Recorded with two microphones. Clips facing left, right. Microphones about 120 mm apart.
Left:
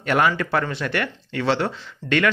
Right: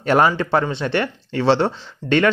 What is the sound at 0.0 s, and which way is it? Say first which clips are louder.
Speech: right 4 dB; 30° right (ahead or behind).